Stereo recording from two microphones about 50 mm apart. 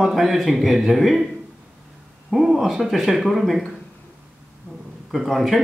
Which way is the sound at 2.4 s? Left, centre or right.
Centre.